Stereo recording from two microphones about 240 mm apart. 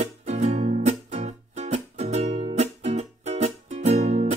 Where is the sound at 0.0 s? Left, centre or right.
Right.